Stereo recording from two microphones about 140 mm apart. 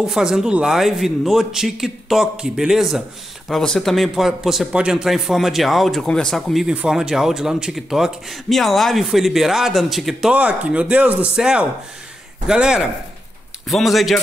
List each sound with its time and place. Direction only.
0.0 s speech: 5° right (ahead or behind)